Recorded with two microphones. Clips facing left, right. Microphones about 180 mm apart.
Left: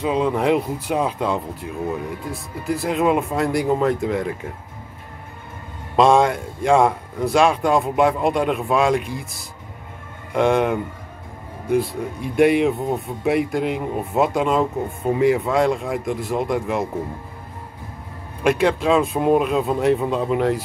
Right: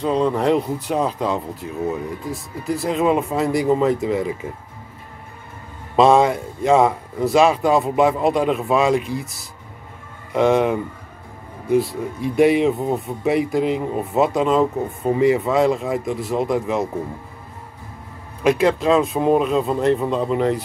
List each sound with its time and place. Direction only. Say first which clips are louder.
0.0 s speech: right 1 dB; 5° left (ahead or behind)
5.9 s speech: right 1 dB; centre (ahead or behind)
18.4 s speech: right 1 dB; centre (ahead or behind)